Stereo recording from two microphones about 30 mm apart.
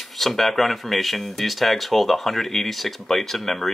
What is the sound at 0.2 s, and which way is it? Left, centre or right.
Speech, centre.